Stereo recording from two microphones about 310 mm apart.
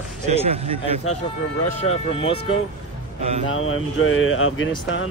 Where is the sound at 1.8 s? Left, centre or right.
Centre.